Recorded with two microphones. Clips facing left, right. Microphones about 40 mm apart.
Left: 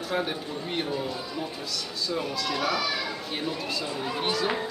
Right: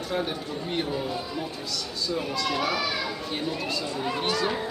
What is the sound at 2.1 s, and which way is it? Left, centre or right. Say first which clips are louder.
Speech: right 2 dB; centre.